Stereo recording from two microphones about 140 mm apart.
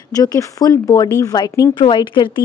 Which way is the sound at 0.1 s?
25° left (ahead or behind).